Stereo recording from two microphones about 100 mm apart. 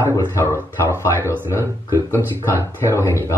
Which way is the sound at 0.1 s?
25° left (ahead or behind).